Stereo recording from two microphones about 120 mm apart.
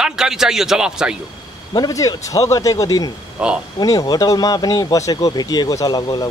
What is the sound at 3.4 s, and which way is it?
Speech, 10° right (ahead or behind).